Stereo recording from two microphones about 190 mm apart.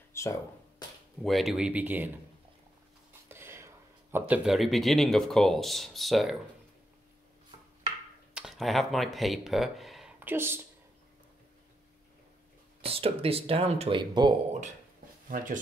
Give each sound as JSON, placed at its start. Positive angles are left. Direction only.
{"t": 0.1, "sound": "a sound", "side_deg": 15}
{"t": 1.2, "sound": "speech", "side_deg": 0}
{"t": 3.3, "sound": "speech", "side_deg": -15}
{"t": 8.4, "sound": "speech", "side_deg": 0}
{"t": 12.8, "sound": "speech", "side_deg": -30}
{"t": 15.2, "sound": "speech", "side_deg": -45}